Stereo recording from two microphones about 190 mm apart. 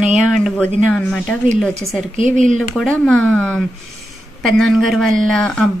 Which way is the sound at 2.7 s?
5° left (ahead or behind).